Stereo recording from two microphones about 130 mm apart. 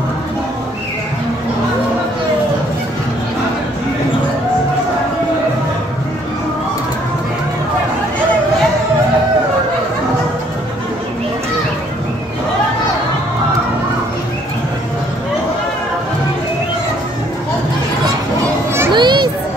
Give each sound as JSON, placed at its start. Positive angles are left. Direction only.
{"t": 18.9, "sound": "children playing", "side_deg": -35}